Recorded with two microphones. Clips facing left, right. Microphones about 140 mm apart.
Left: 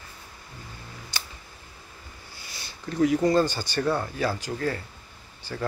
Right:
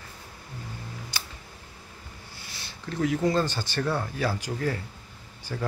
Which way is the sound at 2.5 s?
Centre (ahead or behind).